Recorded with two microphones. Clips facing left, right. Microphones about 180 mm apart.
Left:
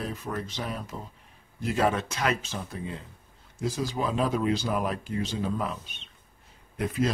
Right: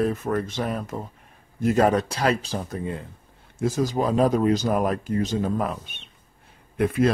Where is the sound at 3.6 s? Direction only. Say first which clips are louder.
Right 6 dB; 45° right (ahead or behind).